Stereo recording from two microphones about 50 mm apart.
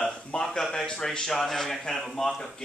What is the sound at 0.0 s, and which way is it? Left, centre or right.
Speech, centre.